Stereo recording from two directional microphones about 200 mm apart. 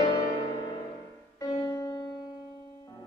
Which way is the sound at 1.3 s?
15° left (ahead or behind).